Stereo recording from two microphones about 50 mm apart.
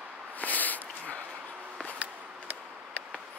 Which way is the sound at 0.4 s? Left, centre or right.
Left.